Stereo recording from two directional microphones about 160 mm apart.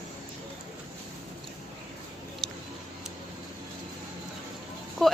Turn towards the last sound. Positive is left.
turn(degrees=0)  # may be behind; listen again after turning